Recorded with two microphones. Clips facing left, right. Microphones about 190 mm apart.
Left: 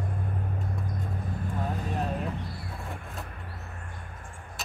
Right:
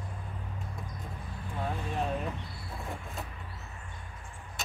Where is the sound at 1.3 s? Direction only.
45° left (ahead or behind).